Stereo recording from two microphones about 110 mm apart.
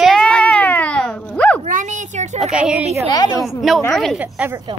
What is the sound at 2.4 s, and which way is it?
Speech, 5° right (ahead or behind).